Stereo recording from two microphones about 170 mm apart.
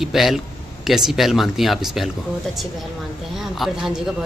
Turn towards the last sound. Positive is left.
turn(degrees=-5)  # may be behind; listen again after turning